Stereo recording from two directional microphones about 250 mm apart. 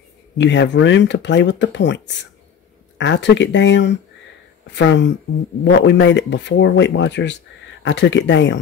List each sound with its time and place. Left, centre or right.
0.4 s speech: left
3.0 s speech: left